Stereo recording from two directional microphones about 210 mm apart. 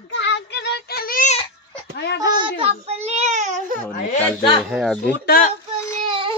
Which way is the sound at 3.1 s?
35° right (ahead or behind).